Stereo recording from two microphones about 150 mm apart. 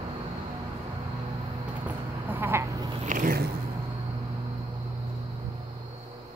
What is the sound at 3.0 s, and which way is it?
Biting, 60° right (ahead or behind).